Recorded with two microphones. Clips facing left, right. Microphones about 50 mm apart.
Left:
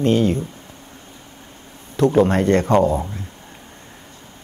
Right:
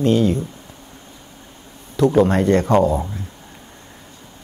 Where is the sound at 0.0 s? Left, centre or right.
Left.